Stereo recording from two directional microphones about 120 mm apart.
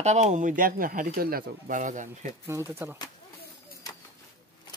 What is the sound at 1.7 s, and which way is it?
Speech, 90° right.